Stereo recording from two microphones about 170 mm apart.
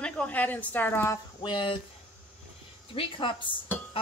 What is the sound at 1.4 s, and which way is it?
Speech, 30° left (ahead or behind).